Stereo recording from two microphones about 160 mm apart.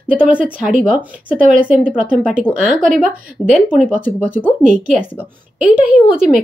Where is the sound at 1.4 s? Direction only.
55° right (ahead or behind).